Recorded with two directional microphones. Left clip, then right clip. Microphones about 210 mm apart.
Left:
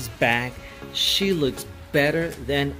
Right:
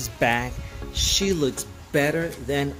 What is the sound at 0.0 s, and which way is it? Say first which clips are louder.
Speech: left 1 dB; centre (ahead or behind).